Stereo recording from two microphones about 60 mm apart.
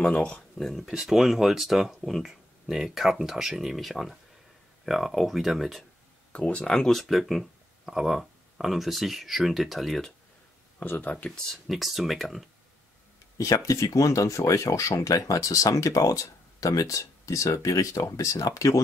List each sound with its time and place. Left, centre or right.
0.0 s speech: centre
0.4 s speech: centre
0.8 s speech: centre
6.3 s speech: centre
10.8 s speech: left
11.2 s speech: centre
13.7 s speech: left